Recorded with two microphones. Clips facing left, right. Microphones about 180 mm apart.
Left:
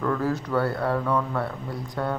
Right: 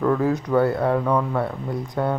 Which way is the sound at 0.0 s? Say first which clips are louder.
Right 5 dB; 20° right (ahead or behind).